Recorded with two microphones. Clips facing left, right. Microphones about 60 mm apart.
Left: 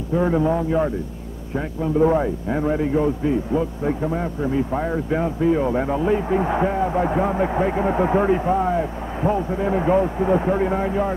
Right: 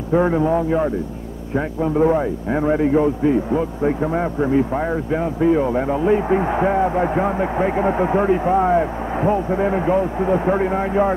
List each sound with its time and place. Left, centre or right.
0.3 s a man's voice: centre
8.5 s a man's voice: right
9.8 s a man's voice: centre; by 11.1 s right